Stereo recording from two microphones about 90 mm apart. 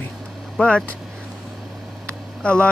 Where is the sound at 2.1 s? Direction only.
10° left (ahead or behind).